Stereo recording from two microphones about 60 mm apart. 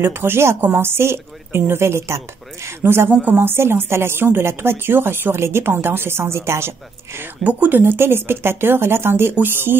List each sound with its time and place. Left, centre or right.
0.0 s a woman's voice: right
3.1 s a woman's voice: right
7.4 s speech: right
7.8 s a woman's voice: right